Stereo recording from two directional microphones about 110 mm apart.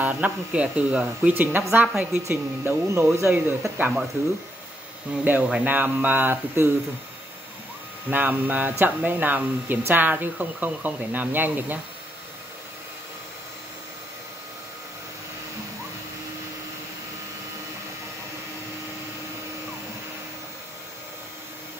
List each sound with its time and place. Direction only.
0.0 s a woman's voice: 15° right (ahead or behind)
5.1 s speech: 15° right (ahead or behind)
8.1 s speech: 15° right (ahead or behind)